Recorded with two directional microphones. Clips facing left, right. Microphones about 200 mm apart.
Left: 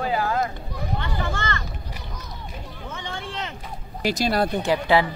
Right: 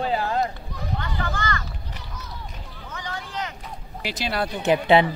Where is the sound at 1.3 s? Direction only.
25° left (ahead or behind).